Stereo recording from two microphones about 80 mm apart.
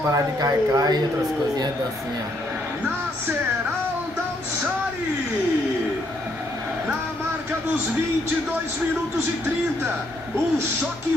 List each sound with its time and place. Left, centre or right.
0.1 s speech: right